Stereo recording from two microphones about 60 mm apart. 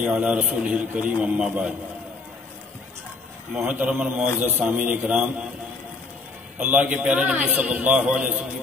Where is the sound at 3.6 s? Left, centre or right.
Right.